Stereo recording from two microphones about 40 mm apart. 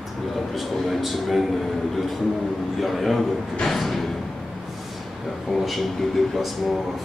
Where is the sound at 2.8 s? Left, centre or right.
Centre.